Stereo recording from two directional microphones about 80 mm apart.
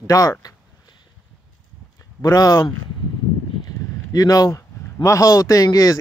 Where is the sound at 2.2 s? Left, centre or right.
Left.